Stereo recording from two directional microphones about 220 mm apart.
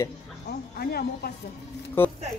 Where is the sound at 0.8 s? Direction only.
45° left (ahead or behind).